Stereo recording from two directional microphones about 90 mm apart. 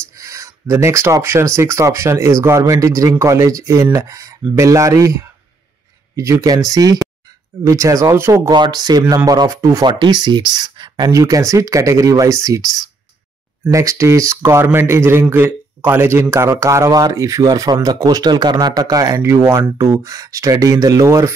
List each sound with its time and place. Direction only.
0.1 s speech: 35° right (ahead or behind)
8.5 s speech: 55° right (ahead or behind); by 9.8 s 35° right (ahead or behind)
9.8 s speech: 55° right (ahead or behind)
19.2 s speech: 30° right (ahead or behind)